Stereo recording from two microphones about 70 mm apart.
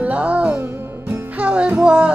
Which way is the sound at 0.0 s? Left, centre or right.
Centre.